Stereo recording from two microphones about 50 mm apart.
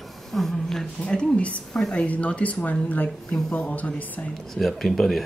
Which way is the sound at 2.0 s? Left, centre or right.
Left.